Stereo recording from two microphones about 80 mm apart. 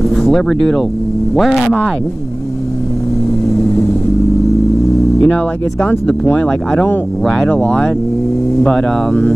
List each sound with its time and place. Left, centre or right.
0.1 s speech: centre
5.2 s speech: centre